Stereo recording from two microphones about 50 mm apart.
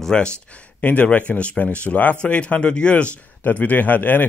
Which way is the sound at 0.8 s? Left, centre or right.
Left.